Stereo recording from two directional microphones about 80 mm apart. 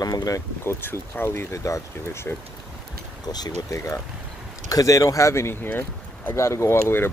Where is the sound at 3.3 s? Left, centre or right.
Left.